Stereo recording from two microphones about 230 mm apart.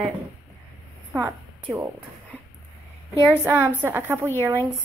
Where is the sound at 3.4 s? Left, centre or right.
Centre.